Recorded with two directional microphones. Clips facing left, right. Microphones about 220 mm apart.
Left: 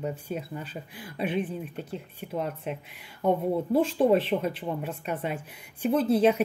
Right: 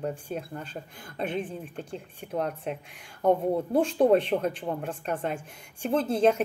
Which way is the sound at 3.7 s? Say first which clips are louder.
Even; 55° right (ahead or behind).